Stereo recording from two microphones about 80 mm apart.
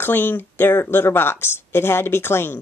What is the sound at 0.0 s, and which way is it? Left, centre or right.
Speech, left.